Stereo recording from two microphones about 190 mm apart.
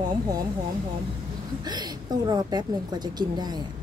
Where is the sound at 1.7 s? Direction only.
20° right (ahead or behind).